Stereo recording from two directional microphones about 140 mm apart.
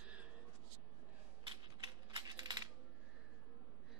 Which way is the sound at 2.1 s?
30° right (ahead or behind).